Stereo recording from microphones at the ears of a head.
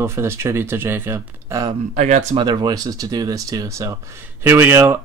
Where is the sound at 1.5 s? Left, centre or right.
Right.